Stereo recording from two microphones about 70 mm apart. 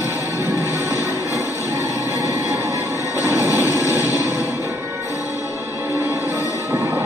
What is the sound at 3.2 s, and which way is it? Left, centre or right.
Train, right.